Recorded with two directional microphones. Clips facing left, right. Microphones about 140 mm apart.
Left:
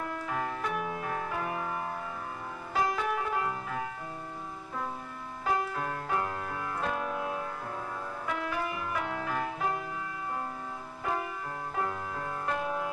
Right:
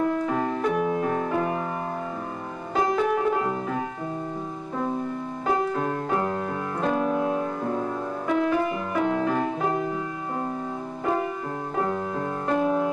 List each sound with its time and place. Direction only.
0.0 s music: 30° right (ahead or behind)
2.7 s music: 25° right (ahead or behind)
5.5 s music: 30° right (ahead or behind)
11.7 s music: 35° right (ahead or behind)